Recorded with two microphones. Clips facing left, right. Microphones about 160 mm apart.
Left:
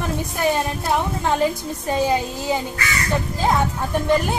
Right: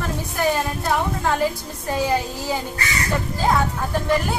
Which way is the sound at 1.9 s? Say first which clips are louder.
Left 1 dB; 20° left (ahead or behind).